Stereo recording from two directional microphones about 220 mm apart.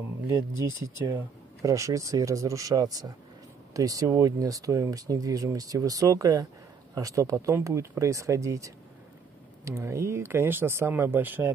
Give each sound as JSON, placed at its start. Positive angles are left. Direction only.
{"t": 0.4, "sound": "speech", "side_deg": -15}